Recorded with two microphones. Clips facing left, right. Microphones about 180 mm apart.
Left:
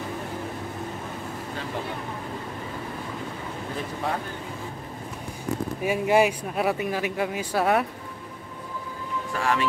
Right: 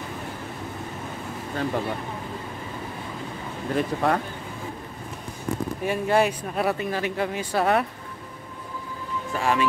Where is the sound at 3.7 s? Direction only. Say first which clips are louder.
Right 7 dB; 65° right (ahead or behind).